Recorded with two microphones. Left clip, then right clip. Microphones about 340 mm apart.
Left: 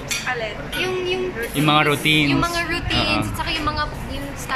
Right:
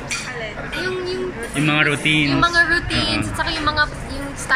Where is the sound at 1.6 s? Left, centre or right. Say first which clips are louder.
Even; centre.